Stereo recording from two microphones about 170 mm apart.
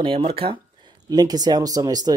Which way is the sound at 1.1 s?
25° right (ahead or behind).